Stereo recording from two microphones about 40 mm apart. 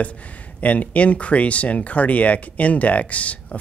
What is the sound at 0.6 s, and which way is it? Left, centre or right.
Speech, left.